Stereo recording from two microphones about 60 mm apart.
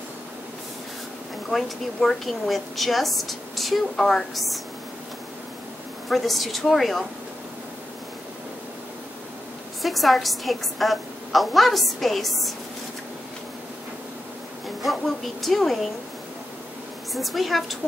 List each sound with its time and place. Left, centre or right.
1.5 s a woman's voice: centre
6.0 s a woman's voice: centre
9.8 s a woman's voice: centre
14.8 s a woman's voice: centre
17.1 s a woman's voice: centre